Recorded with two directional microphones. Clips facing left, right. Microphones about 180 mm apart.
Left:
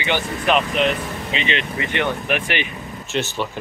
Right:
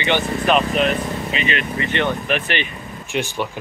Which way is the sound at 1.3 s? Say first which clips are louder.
Left 2 dB; 25° left (ahead or behind).